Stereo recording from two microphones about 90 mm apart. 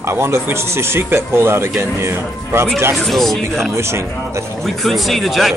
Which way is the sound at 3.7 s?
30° right (ahead or behind).